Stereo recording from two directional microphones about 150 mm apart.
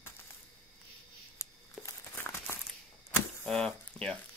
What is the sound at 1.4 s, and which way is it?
Crumpling, 20° left (ahead or behind).